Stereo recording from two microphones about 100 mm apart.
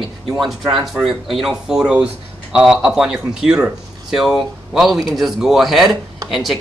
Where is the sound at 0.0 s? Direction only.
Centre (ahead or behind).